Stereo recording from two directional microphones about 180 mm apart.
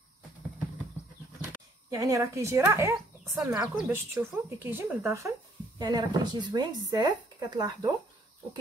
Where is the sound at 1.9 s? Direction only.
15° right (ahead or behind).